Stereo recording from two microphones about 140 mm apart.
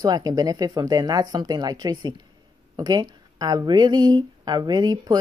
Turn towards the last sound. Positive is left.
turn(degrees=-30)  # may be behind; listen again after turning